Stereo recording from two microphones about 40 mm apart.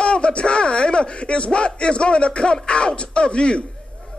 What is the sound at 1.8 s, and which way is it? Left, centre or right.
Speech, left.